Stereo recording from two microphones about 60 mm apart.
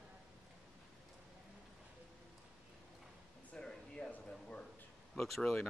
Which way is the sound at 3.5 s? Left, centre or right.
Centre.